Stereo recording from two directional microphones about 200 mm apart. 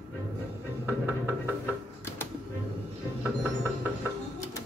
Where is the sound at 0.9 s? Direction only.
10° right (ahead or behind).